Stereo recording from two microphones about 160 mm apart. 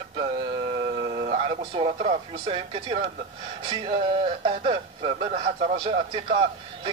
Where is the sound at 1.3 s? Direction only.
35° right (ahead or behind).